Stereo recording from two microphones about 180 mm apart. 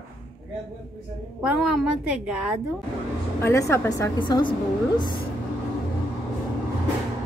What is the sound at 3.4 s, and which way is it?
Speech, 15° left (ahead or behind).